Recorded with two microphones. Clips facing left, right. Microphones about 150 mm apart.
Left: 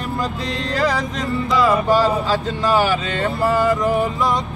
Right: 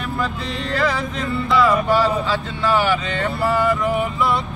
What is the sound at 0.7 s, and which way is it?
Speech, 40° left (ahead or behind).